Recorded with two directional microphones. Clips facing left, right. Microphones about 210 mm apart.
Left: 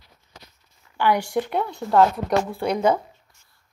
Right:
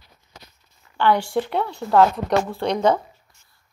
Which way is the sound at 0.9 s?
10° left (ahead or behind).